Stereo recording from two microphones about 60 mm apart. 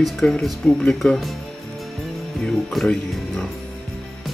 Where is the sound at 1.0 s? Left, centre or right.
Centre.